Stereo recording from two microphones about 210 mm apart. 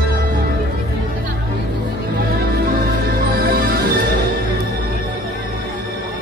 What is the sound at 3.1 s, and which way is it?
Music, 45° right (ahead or behind).